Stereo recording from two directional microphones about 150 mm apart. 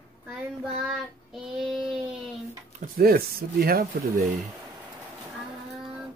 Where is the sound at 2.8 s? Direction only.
80° right.